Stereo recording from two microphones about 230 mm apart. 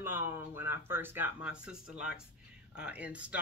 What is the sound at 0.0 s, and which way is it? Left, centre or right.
Speech, centre.